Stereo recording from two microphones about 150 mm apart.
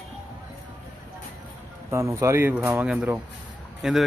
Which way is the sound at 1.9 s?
20° right (ahead or behind).